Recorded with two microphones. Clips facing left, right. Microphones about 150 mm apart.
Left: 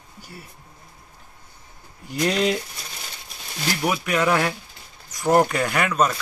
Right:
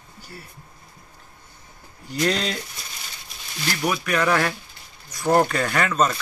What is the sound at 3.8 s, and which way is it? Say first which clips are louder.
Speech: even; 15° left (ahead or behind).